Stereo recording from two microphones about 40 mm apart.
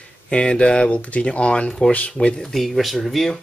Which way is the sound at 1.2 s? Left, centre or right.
Left.